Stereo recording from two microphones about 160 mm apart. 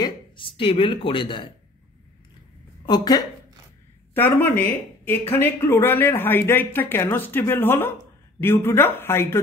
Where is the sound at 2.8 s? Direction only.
25° left (ahead or behind).